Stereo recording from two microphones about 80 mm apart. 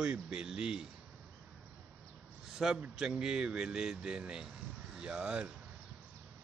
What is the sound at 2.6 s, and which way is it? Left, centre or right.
Speech, centre.